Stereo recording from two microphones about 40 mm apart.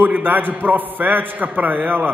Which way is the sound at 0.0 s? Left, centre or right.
Right.